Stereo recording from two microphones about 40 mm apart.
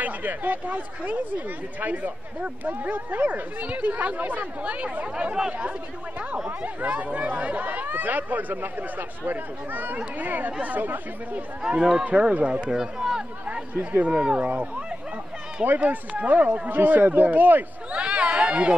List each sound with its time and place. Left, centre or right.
0.0 s speech: right
6.6 s speech: right
11.6 s speech: centre
12.0 s speech: right
12.7 s speech: centre
13.7 s speech: right
14.1 s speech: right
15.6 s speech: right
16.6 s speech: right
17.9 s run: right